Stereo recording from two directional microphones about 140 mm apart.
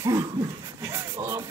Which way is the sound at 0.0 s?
25° right (ahead or behind).